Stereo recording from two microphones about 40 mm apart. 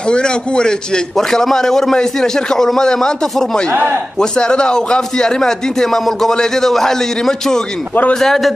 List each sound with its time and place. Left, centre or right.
0.0 s a man's voice: left
1.1 s speech: centre